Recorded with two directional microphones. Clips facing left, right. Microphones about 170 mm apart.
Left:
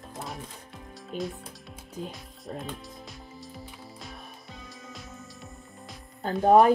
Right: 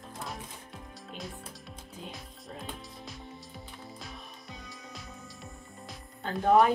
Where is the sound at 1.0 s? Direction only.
Centre (ahead or behind).